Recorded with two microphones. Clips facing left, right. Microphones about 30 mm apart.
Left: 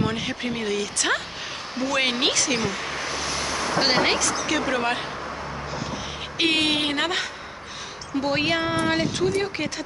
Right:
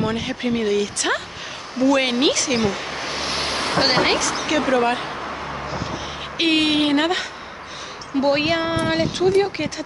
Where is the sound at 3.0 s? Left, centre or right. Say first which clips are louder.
Right 5 dB; right.